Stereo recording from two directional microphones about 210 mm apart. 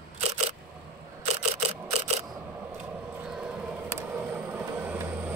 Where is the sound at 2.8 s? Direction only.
5° right (ahead or behind).